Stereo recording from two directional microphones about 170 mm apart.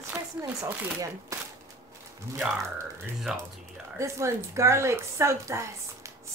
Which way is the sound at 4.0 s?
15° right (ahead or behind).